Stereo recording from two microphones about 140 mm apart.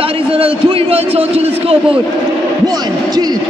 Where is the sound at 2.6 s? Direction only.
30° right (ahead or behind).